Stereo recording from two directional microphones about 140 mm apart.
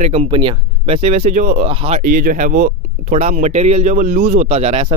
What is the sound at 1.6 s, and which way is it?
Speech, 45° right (ahead or behind).